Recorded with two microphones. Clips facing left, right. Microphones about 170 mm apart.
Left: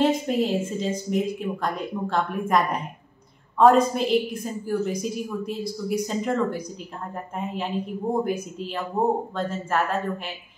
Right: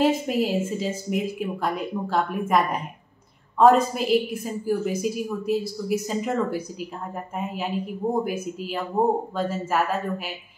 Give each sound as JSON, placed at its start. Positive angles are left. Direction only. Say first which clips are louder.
{"t": 0.0, "sound": "a woman's voice", "louder": "even", "side_deg": -5}
{"t": 8.1, "sound": "speech", "louder": "left 1 dB", "side_deg": -5}